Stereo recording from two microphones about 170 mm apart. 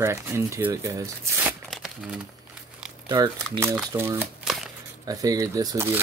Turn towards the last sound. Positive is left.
turn(degrees=-15)  # may be behind; listen again after turning